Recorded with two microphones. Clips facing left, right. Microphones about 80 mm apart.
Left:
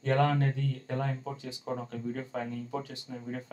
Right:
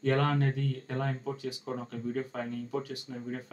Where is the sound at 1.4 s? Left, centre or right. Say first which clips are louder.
Even; left.